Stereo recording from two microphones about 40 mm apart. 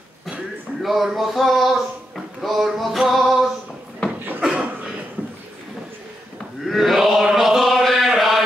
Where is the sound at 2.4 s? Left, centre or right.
Centre.